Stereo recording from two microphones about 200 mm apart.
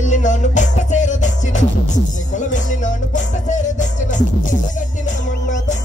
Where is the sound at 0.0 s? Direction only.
40° left (ahead or behind).